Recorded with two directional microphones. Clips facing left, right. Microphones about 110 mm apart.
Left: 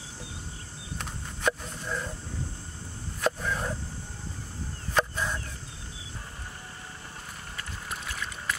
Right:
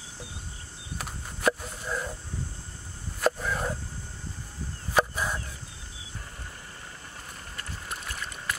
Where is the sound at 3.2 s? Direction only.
5° right (ahead or behind).